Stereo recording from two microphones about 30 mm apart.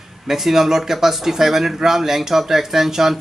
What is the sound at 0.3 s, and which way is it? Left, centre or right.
Speech, centre.